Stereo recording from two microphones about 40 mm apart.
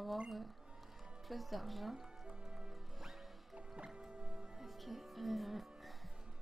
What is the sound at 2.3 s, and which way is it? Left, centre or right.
Music, centre.